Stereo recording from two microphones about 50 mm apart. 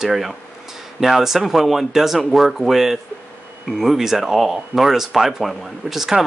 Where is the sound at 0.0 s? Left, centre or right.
Centre.